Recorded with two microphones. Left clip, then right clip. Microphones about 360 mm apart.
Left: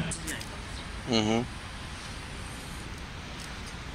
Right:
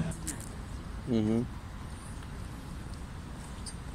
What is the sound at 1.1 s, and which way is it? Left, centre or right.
Speech, left.